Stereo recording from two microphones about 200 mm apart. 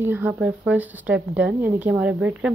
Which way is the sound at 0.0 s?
10° right (ahead or behind).